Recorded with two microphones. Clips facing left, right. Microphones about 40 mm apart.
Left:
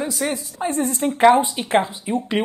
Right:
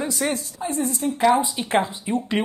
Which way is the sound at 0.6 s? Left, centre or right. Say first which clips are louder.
Left 4 dB; left.